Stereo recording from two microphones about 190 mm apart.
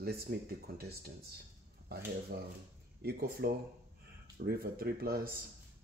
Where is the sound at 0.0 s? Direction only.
55° right (ahead or behind).